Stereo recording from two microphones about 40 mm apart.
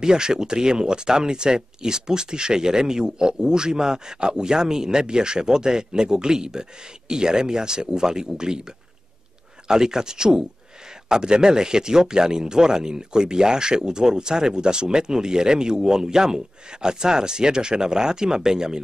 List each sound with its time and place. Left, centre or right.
0.0 s speech: centre
9.7 s speech: centre